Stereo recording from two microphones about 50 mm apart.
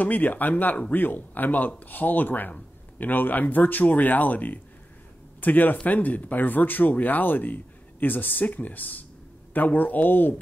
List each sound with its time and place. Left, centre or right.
0.0 s speech: left